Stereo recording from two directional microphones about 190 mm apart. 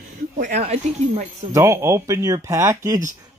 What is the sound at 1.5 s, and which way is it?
Speech, 15° right (ahead or behind).